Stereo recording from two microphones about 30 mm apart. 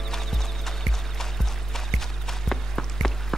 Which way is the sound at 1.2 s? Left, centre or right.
Centre.